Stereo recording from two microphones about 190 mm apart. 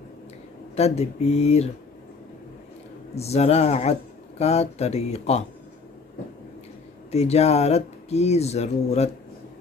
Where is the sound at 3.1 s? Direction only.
35° left (ahead or behind).